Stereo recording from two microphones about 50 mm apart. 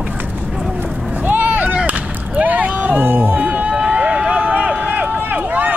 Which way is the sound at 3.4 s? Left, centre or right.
Right.